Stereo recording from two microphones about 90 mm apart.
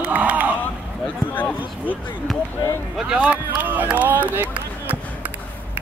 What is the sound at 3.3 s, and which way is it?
Speech, 20° right (ahead or behind).